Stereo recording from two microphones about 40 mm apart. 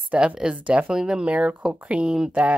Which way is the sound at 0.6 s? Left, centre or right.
Right.